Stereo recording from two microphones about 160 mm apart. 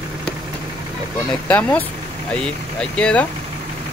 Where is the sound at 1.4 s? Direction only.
10° left (ahead or behind).